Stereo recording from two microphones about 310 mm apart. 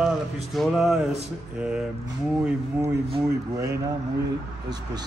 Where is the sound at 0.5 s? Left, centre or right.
Centre.